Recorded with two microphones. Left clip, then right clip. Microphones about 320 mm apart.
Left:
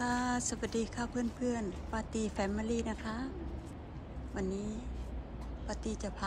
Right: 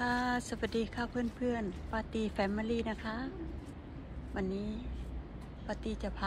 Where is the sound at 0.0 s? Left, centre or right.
Centre.